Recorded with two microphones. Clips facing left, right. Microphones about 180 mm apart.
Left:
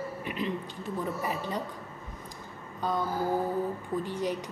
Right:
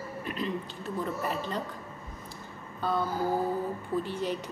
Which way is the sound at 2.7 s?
15° left (ahead or behind).